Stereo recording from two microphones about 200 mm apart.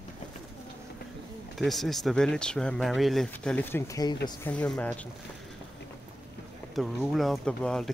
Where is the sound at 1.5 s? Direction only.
Centre (ahead or behind).